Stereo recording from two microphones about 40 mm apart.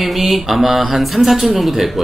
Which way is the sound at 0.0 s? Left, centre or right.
Centre.